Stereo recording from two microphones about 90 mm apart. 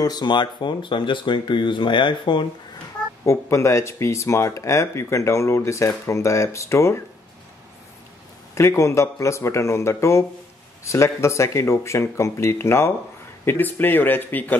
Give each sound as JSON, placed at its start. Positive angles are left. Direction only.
{"t": 0.0, "sound": "speech", "side_deg": 50}
{"t": 3.3, "sound": "speech", "side_deg": 30}
{"t": 8.5, "sound": "speech", "side_deg": 35}